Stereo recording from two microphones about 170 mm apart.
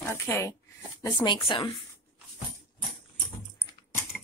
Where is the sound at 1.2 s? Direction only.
30° left (ahead or behind).